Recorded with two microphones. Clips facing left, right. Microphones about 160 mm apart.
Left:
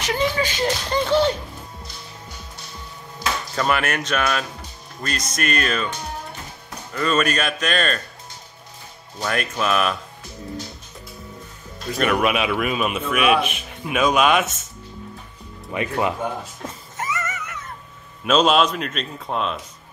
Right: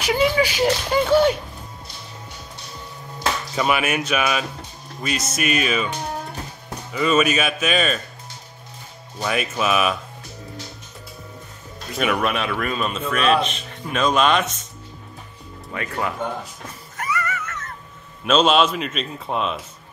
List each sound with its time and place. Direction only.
0.0 s speech: 10° right (ahead or behind)
3.5 s speech: 10° right (ahead or behind)
9.2 s speech: 5° right (ahead or behind)
12.0 s a man's voice: centre (ahead or behind)
15.7 s speech: 20° left (ahead or behind)
16.9 s cat: 20° left (ahead or behind)
18.2 s speech: centre (ahead or behind)